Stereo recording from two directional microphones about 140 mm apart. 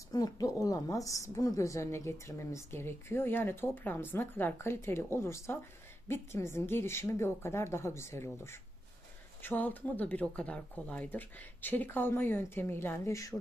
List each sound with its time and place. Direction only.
0.1 s a woman's voice: 25° left (ahead or behind)